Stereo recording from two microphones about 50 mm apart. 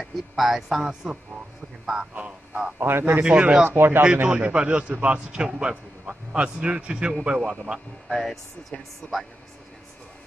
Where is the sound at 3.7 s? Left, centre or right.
Right.